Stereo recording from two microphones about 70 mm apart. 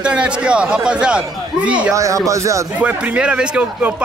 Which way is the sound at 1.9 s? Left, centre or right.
Right.